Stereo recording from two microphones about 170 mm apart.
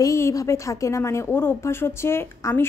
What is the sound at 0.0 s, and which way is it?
A woman's voice, 20° left (ahead or behind).